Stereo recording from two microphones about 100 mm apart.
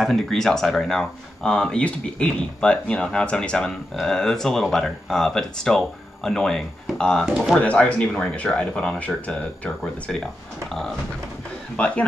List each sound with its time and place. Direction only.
0.0 s speech: centre (ahead or behind)
11.7 s a man's voice: 10° left (ahead or behind)